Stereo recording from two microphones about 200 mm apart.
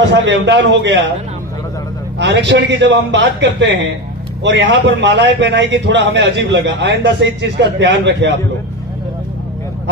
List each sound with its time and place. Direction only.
0.1 s a man's voice: 60° right (ahead or behind)
2.1 s a man's voice: 60° right (ahead or behind)